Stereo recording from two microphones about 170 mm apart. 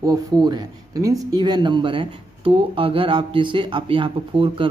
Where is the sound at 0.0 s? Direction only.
25° right (ahead or behind).